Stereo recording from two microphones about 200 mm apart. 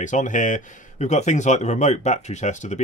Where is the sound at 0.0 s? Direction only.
40° left (ahead or behind).